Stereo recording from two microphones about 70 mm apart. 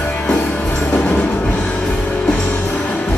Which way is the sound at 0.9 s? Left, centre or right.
Centre.